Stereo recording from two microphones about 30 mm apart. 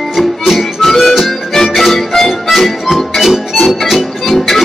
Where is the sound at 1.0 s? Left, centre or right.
Centre.